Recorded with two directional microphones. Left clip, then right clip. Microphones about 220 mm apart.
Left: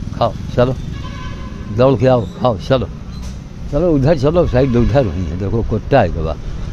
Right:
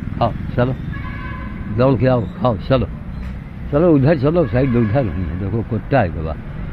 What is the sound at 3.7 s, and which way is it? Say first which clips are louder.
Speech: right 1 dB; 5° right (ahead or behind).